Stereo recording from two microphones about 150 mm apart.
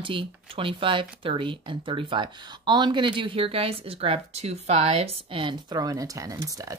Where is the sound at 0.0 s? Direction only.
35° right (ahead or behind).